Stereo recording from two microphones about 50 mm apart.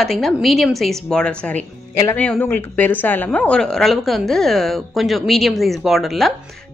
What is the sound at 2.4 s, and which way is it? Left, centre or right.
Speech, left.